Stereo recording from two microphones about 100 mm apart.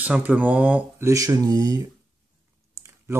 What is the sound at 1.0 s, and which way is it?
Speech, 30° right (ahead or behind).